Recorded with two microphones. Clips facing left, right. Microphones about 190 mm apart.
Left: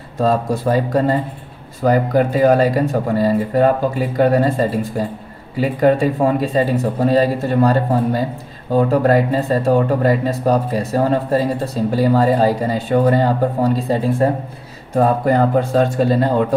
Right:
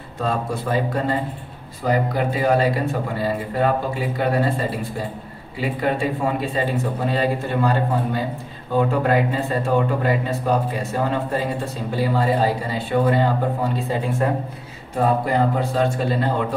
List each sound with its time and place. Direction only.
0.2 s speech: 40° left (ahead or behind)
15.0 s speech: 50° left (ahead or behind)